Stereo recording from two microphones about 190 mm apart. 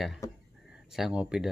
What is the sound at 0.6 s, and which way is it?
Speech, 5° right (ahead or behind).